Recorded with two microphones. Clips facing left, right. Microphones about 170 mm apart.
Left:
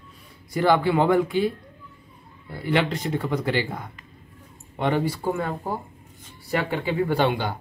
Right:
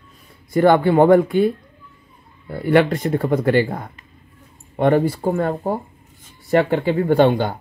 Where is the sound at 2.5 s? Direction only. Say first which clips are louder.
Right 8 dB; 50° right (ahead or behind).